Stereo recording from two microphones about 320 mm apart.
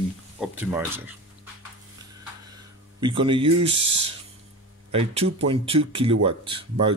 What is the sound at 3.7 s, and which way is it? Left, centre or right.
Speech, right.